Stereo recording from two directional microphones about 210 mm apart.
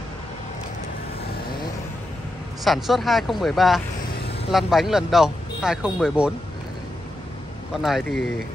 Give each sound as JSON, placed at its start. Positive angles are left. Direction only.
{"t": 2.6, "sound": "a man's voice", "side_deg": 0}
{"t": 7.7, "sound": "a man's voice", "side_deg": 0}